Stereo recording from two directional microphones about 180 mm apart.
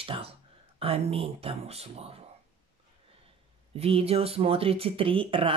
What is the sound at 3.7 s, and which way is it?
Speech, 35° right (ahead or behind).